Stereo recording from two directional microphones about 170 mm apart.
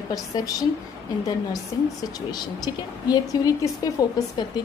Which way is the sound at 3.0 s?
20° left (ahead or behind).